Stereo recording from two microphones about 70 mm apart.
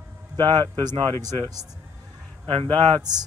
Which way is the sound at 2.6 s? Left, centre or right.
Right.